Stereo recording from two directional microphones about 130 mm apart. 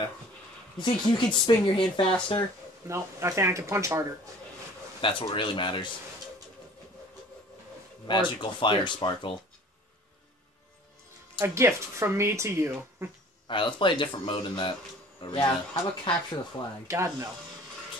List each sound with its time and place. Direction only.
0.7 s a woman's voice: 35° left (ahead or behind)
2.9 s speech: 20° right (ahead or behind)
5.0 s a woman's voice: 40° left (ahead or behind)
8.1 s a woman's voice: 40° left (ahead or behind)
11.3 s speech: 20° right (ahead or behind)
13.5 s a woman's voice: 40° left (ahead or behind)
16.8 s speech: 20° right (ahead or behind)